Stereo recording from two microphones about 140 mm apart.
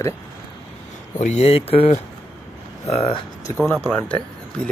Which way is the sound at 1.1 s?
55° left (ahead or behind).